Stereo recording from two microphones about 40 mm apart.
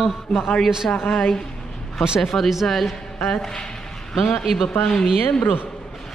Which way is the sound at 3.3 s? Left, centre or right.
Centre.